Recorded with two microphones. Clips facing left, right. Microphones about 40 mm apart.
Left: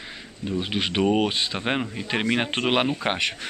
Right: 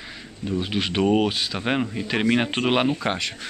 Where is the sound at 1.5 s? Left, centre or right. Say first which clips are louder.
Right 2 dB; centre.